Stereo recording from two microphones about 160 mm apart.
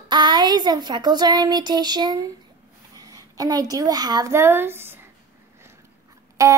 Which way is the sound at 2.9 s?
20° right (ahead or behind).